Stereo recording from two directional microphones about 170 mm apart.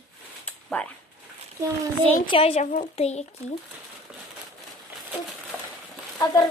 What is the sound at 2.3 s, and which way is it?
A woman's voice, 35° left (ahead or behind).